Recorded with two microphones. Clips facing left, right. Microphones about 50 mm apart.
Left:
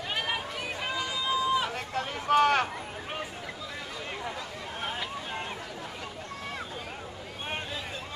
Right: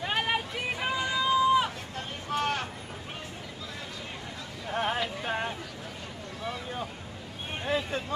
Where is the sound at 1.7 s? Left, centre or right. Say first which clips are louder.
Left 5 dB; left.